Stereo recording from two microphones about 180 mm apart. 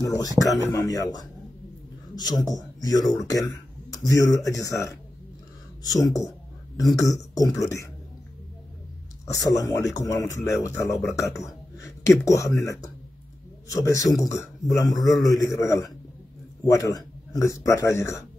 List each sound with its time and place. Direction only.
0.0 s speech: 20° left (ahead or behind)
2.4 s speech: 20° left (ahead or behind)
5.9 s speech: 20° left (ahead or behind)
9.2 s speech: 20° left (ahead or behind)